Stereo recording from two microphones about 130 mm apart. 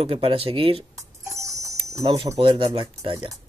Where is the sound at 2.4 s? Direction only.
45° right (ahead or behind).